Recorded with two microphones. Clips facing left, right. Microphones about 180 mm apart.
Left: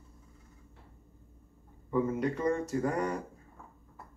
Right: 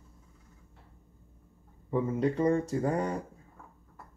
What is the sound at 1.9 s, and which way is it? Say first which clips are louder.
Speech: right 1 dB; 30° right (ahead or behind).